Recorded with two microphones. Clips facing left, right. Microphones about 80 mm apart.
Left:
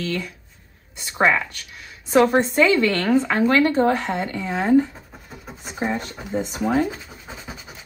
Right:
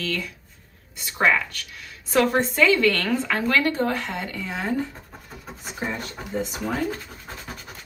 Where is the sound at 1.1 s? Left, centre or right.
Left.